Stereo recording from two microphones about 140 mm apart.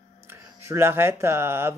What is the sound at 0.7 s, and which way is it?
Speech, 15° right (ahead or behind).